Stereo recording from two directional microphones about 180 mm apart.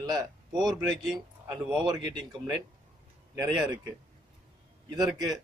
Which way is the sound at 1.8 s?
25° right (ahead or behind).